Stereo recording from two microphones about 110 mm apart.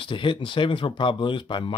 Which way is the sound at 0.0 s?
50° left (ahead or behind).